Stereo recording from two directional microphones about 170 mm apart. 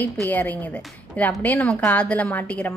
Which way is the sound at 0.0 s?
10° left (ahead or behind).